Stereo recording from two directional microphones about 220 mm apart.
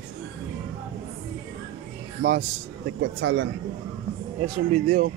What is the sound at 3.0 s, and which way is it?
Speech, 60° right (ahead or behind).